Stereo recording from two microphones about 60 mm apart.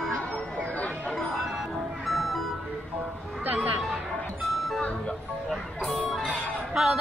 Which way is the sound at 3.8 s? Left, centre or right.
Centre.